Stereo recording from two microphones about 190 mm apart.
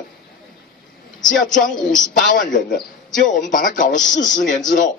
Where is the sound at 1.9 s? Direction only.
45° left (ahead or behind).